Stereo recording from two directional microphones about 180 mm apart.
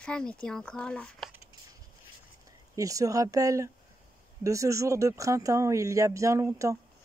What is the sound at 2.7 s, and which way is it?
Speech, 20° right (ahead or behind).